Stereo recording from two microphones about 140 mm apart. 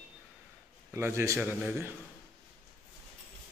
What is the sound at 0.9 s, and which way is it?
Speech, 20° right (ahead or behind).